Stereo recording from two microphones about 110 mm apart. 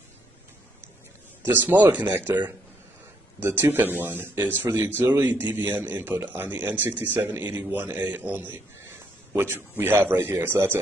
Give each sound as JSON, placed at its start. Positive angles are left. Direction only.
{"t": 1.4, "sound": "a man's voice", "side_deg": -15}